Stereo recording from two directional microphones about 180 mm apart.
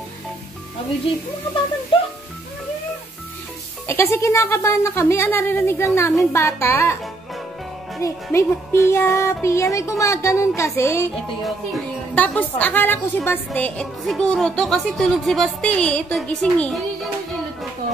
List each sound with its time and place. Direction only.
1.9 s speech: 30° left (ahead or behind)
3.8 s music: 15° left (ahead or behind)
8.0 s music: 15° left (ahead or behind)
12.2 s a woman's voice: 10° left (ahead or behind)